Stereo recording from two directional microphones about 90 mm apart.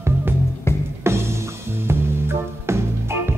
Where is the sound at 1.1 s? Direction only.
30° right (ahead or behind).